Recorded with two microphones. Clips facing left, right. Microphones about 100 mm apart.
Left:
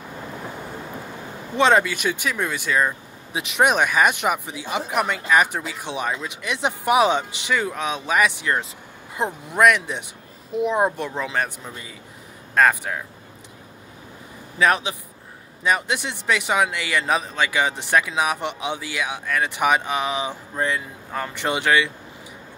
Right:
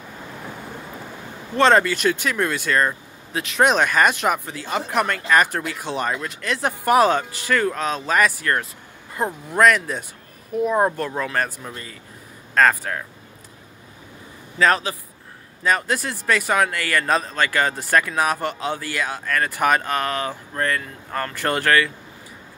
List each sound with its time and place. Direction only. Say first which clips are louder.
1.6 s speech: right 2 dB; 10° left (ahead or behind)
14.6 s speech: right 1 dB; 10° left (ahead or behind)